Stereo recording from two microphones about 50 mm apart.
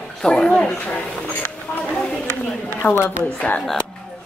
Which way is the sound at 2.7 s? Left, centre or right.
Left.